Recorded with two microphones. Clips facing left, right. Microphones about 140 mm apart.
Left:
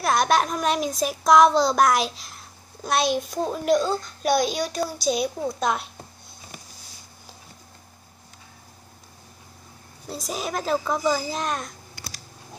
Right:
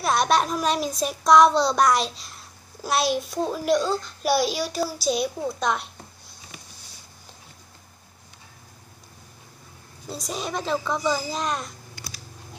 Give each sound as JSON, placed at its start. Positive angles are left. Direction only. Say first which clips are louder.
{"t": 0.0, "sound": "a child's voice", "louder": "left 1 dB", "side_deg": 0}
{"t": 10.0, "sound": "a child's voice", "louder": "left 1 dB", "side_deg": 0}